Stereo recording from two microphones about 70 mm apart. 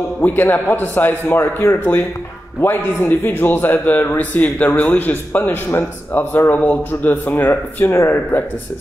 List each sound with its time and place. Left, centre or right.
0.2 s a man's voice: left
6.5 s a man's voice: left
7.8 s speech: left
8.1 s a man's voice: left